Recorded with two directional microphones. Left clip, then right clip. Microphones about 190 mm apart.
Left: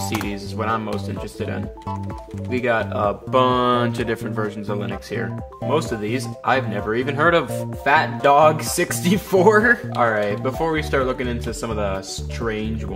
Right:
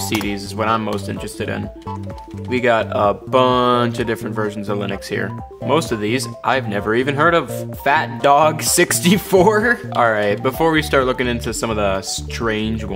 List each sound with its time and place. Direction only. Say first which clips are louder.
0.3 s speech: right 6 dB; 30° right (ahead or behind)
7.8 s speech: right 1 dB; 30° right (ahead or behind)
9.9 s speech: right 4 dB; 35° right (ahead or behind)